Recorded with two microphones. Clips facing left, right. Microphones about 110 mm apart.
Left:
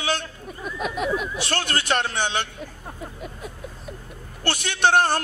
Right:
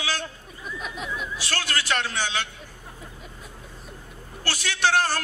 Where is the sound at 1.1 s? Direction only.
60° left (ahead or behind).